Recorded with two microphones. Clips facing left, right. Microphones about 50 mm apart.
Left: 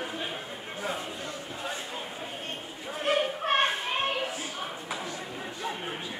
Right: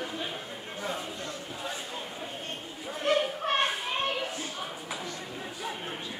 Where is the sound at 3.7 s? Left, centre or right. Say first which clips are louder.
Left 1 dB; centre.